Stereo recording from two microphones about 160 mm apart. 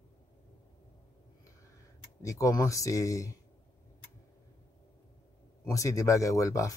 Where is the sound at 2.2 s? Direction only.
20° left (ahead or behind).